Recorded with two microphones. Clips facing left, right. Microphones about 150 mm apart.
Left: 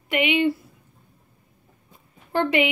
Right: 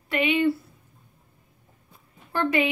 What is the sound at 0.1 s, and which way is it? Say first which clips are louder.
Speech: left 2 dB; 15° left (ahead or behind).